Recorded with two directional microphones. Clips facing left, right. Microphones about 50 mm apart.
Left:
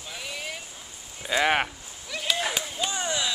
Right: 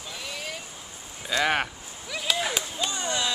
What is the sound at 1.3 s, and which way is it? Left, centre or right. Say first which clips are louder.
Speech: left 1 dB; centre.